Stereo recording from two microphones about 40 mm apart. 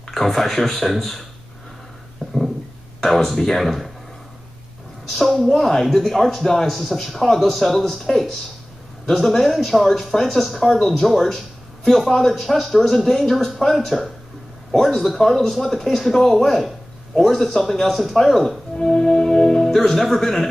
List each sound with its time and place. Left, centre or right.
0.0 s speech: centre
3.0 s speech: centre
5.1 s speech: centre
18.8 s music: centre
19.7 s speech: centre